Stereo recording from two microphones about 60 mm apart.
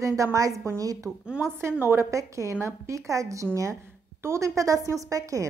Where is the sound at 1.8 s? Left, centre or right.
Right.